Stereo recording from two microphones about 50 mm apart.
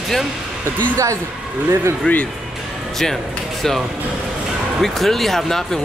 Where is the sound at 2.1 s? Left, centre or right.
Left.